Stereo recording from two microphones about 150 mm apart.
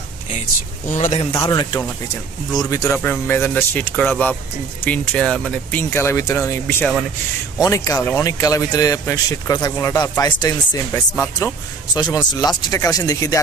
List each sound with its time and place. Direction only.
0.8 s a man's voice: 50° left (ahead or behind)
1.4 s speech: 30° left (ahead or behind)
3.0 s speech: 10° left (ahead or behind)